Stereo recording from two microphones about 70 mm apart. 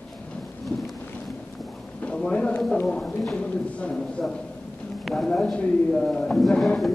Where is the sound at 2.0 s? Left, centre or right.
Centre.